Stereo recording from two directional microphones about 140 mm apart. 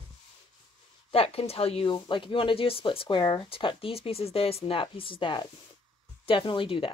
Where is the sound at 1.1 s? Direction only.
45° left (ahead or behind).